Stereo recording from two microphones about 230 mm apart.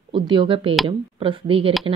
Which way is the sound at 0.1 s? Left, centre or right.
Right.